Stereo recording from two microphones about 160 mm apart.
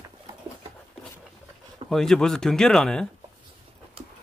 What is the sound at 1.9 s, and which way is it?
Speech, centre (ahead or behind).